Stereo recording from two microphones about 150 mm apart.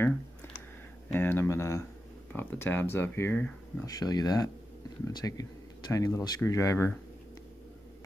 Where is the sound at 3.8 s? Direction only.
25° left (ahead or behind).